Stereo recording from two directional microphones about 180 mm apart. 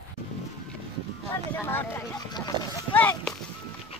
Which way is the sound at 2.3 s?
25° left (ahead or behind).